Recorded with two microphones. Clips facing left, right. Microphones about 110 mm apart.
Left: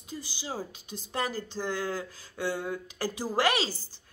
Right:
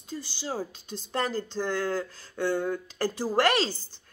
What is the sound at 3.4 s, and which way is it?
Speech, 10° left (ahead or behind).